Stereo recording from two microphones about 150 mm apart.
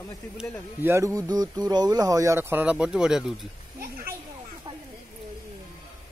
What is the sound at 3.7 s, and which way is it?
Speech, 80° right.